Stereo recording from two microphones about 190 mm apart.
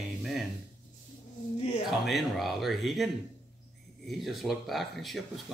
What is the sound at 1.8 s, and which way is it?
Speech, centre (ahead or behind).